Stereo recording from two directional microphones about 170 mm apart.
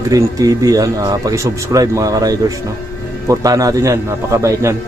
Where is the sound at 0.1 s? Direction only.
20° right (ahead or behind).